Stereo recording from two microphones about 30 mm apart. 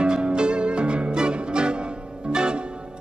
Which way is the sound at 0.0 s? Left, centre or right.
Right.